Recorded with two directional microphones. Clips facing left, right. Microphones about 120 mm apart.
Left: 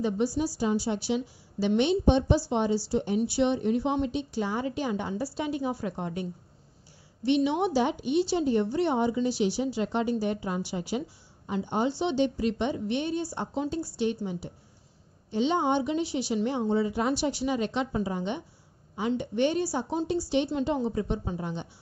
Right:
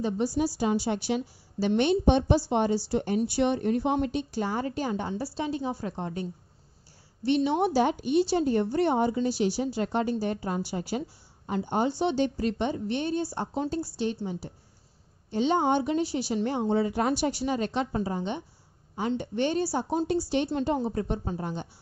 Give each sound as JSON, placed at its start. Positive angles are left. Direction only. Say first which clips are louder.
{"t": 0.4, "sound": "a woman's voice", "louder": "right 1 dB", "side_deg": -65}
{"t": 7.2, "sound": "a woman's voice", "louder": "even", "side_deg": -40}
{"t": 16.6, "sound": "a woman's voice", "louder": "right 3 dB", "side_deg": -60}
{"t": 20.1, "sound": "a woman's voice", "louder": "even", "side_deg": -45}